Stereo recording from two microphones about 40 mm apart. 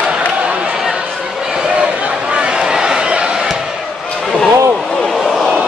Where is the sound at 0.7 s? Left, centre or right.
Centre.